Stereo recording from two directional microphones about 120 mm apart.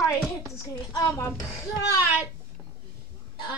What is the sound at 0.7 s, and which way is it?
A woman's voice, 25° left (ahead or behind).